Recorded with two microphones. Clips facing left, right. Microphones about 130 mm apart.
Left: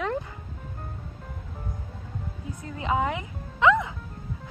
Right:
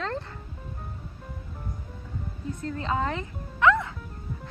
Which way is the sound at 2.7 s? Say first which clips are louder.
Left 3 dB; 15° left (ahead or behind).